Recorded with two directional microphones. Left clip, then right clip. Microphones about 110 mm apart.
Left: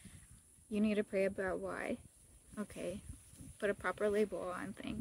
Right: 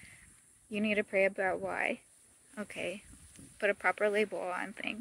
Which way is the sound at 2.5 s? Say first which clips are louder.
Right 4 dB; 20° left (ahead or behind).